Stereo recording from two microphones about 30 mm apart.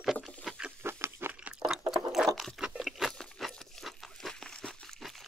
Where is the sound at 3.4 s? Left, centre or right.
Centre.